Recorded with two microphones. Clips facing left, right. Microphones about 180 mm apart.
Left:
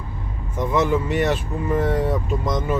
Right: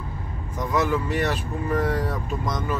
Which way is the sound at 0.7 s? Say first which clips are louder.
Left 3 dB; 25° left (ahead or behind).